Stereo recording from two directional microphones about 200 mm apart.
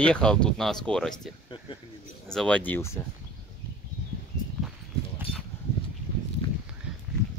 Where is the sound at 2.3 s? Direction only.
5° left (ahead or behind).